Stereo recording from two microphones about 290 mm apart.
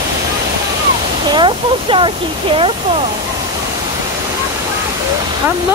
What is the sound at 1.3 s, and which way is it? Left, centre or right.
Speech, centre.